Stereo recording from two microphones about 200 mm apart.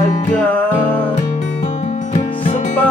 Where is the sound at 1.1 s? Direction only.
35° left (ahead or behind).